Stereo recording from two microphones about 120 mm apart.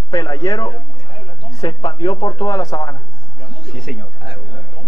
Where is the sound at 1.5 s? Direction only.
30° left (ahead or behind).